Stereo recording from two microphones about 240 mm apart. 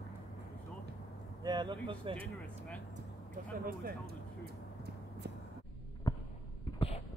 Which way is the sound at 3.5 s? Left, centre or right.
Right.